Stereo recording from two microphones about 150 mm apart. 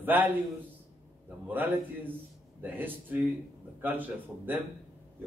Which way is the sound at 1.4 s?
10° right (ahead or behind).